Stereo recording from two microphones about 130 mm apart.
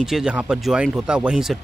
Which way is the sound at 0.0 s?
5° right (ahead or behind).